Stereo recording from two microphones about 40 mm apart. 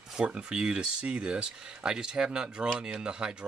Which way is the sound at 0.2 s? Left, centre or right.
Right.